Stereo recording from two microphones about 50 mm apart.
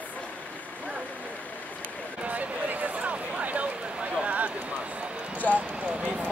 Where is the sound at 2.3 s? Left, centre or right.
Right.